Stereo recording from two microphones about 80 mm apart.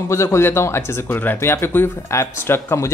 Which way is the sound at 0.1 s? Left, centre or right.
Left.